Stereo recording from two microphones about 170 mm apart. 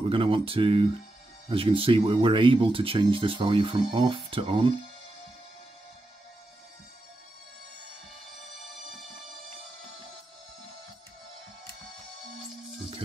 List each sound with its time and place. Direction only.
0.1 s speech: 30° right (ahead or behind)